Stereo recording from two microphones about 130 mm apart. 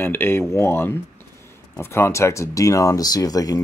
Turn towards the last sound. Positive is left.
turn(degrees=30)  # may be behind; listen again after turning